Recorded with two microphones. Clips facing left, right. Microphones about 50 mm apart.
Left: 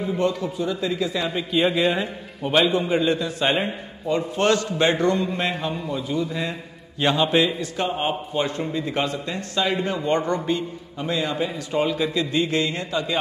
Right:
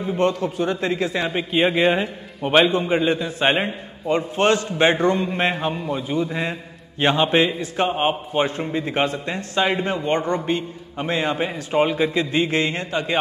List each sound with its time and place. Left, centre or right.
0.2 s a man's voice: right
1.2 s a man's voice: right